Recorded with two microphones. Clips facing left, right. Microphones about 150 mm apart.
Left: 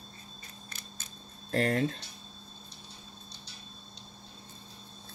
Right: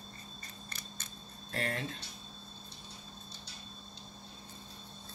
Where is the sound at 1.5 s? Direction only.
40° left (ahead or behind).